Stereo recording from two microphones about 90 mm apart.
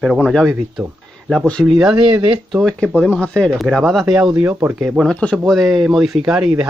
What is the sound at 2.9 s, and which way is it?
Speech, 15° left (ahead or behind).